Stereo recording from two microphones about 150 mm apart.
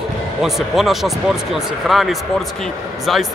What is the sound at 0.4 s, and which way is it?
Speech, centre (ahead or behind).